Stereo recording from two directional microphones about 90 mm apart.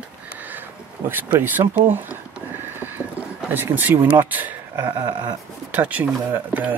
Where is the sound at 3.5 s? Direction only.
20° right (ahead or behind).